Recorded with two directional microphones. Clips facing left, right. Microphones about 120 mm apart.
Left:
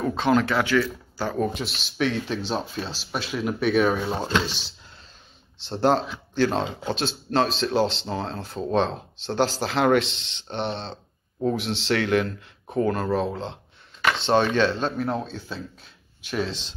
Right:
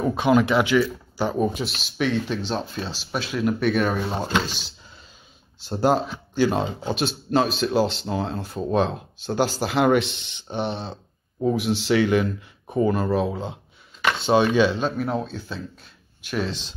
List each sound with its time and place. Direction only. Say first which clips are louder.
0.0 s speech: right 2 dB; 10° right (ahead or behind)
1.5 s speech: right 2 dB; centre (ahead or behind)
10.0 s speech: right 1 dB; 75° left (ahead or behind)
10.5 s speech: right 2 dB; 10° right (ahead or behind)